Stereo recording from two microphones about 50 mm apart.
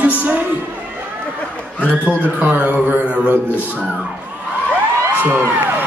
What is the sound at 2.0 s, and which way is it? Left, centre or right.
Speech, left.